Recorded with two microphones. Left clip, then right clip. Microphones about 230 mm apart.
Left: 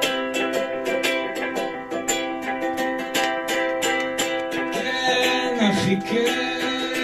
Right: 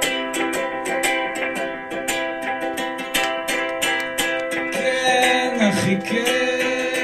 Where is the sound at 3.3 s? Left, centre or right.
Right.